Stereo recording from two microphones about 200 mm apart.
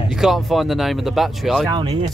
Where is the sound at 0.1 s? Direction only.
Centre (ahead or behind).